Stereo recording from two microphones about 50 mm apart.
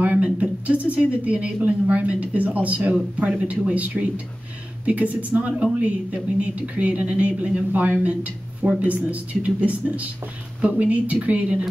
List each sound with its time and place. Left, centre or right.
0.0 s speech: right